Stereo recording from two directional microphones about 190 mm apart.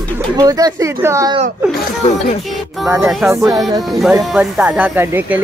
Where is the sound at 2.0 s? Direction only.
35° left (ahead or behind).